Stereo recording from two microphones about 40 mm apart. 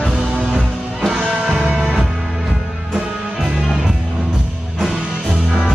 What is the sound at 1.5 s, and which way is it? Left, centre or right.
Music, right.